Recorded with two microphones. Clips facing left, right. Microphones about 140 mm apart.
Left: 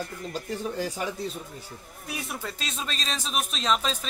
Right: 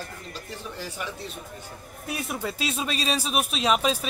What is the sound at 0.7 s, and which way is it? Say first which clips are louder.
Speech: left 2 dB; 40° left (ahead or behind).